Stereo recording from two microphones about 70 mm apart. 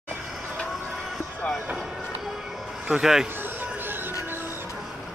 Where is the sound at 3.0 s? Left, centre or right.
Centre.